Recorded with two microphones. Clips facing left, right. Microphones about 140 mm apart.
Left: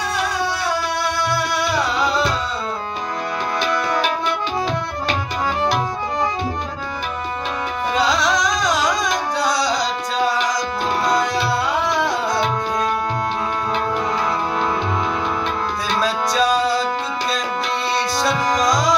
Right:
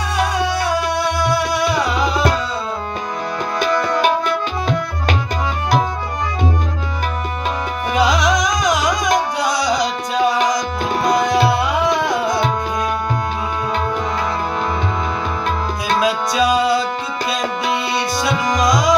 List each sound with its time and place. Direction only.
1.0 s music: 20° right (ahead or behind)
7.9 s music: 15° right (ahead or behind)
11.5 s tabla: 20° right (ahead or behind)
16.0 s music: 10° right (ahead or behind)
18.6 s tabla: 10° right (ahead or behind)